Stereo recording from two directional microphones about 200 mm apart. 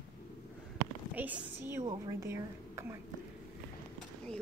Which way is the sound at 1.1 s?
10° right (ahead or behind).